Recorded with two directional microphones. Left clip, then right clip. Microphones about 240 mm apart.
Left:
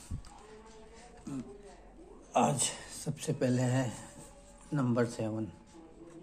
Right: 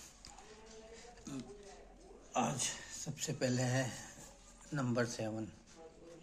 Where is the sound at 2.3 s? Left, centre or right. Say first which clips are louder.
Left 7 dB; left.